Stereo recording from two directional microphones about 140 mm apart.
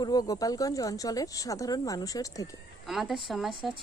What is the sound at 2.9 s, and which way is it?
Speech, centre (ahead or behind).